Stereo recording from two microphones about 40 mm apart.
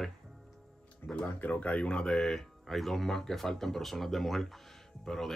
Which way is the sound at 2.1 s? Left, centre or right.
Centre.